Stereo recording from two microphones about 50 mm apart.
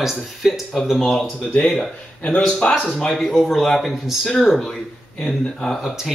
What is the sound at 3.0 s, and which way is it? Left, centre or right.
Speech, centre.